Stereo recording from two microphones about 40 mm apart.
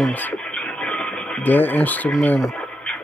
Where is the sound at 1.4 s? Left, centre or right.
Left.